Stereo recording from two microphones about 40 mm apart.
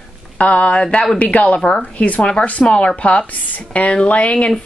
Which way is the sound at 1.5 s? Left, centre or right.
Left.